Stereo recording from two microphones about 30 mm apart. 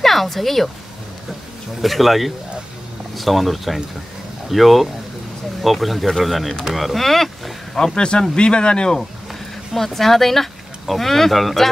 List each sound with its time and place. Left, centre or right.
0.0 s speech: centre
1.8 s speech: centre
7.8 s speech: left
9.8 s speech: centre